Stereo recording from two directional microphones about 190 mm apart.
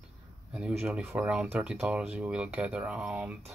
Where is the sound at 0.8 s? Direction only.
5° right (ahead or behind).